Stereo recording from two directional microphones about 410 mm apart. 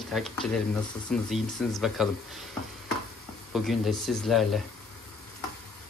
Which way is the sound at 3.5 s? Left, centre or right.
Centre.